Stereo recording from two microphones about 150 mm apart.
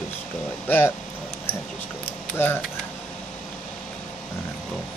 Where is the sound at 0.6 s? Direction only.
15° left (ahead or behind).